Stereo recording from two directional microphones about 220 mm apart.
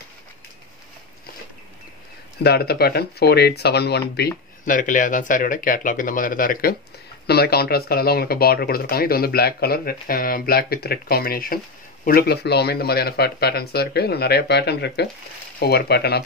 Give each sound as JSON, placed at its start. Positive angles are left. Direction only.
{"t": 2.4, "sound": "speech", "side_deg": 45}
{"t": 4.6, "sound": "speech", "side_deg": 35}